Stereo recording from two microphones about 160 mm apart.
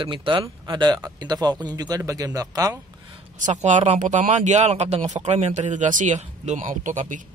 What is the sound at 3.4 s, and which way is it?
Speech, 50° right (ahead or behind).